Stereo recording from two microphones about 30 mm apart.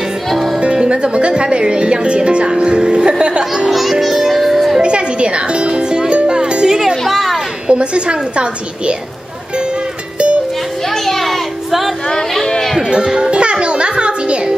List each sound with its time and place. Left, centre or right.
0.3 s music: centre
0.7 s speech: right
4.3 s music: centre
4.8 s music: right
7.1 s a sound: centre
7.6 s speech: right
10.1 s music: right
10.9 s children playing: centre
12.4 s music: centre
12.9 s a child's voice: right
13.3 s music: right